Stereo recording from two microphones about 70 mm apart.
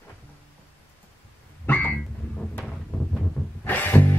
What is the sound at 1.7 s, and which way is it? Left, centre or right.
Music, left.